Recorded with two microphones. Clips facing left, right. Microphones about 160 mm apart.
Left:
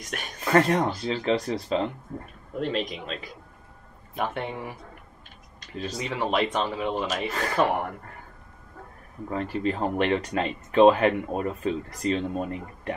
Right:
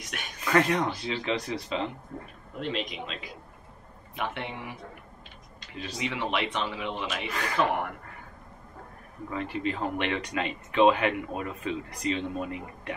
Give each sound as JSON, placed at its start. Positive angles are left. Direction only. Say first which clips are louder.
{"t": 0.0, "sound": "speech", "louder": "left 3 dB", "side_deg": 45}
{"t": 9.3, "sound": "speech", "louder": "left 4 dB", "side_deg": 40}